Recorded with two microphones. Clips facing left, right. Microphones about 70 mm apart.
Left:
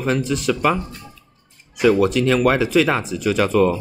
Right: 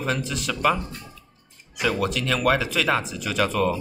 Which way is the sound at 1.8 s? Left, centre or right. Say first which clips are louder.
Left 9 dB; left.